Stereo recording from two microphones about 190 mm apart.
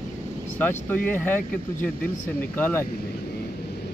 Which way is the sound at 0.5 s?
10° left (ahead or behind).